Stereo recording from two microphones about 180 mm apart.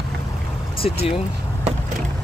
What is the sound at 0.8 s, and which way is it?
Speech, 30° left (ahead or behind).